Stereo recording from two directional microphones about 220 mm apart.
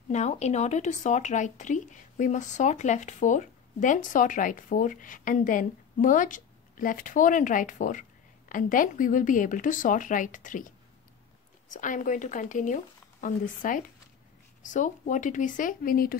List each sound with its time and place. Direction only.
0.1 s speech: 30° left (ahead or behind)
11.7 s speech: 35° left (ahead or behind)